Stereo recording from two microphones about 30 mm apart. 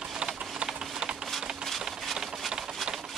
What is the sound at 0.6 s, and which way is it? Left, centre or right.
Typing, right.